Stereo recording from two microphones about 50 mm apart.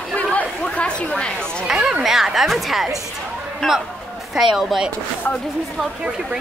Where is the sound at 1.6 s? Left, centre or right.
Centre.